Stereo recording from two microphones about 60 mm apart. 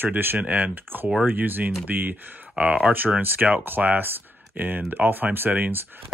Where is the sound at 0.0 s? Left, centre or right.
Right.